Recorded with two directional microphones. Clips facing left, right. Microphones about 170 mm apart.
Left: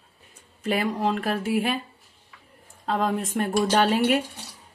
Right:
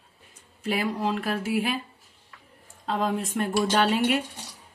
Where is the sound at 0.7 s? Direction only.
50° left (ahead or behind).